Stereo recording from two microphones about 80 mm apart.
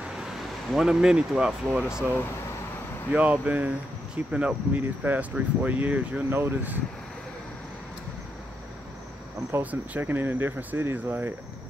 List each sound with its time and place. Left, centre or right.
0.0 s speech: centre
3.1 s speech: centre
9.6 s speech: right